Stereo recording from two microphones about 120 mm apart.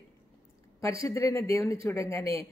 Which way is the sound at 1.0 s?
25° left (ahead or behind).